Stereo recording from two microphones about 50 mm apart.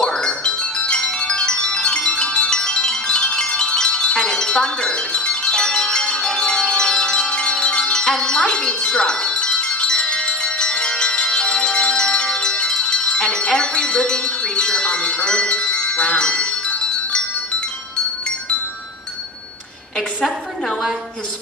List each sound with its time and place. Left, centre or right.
0.0 s music: centre
20.2 s a woman's voice: centre